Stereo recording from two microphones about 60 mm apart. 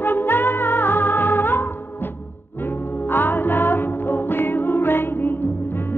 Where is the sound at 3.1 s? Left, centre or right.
Left.